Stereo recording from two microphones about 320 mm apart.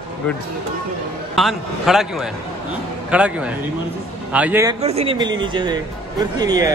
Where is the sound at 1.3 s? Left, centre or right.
Centre.